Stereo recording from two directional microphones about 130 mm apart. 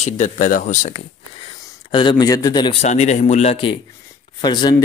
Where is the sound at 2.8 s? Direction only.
60° left (ahead or behind).